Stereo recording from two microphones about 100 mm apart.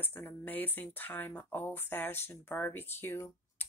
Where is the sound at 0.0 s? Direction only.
20° left (ahead or behind).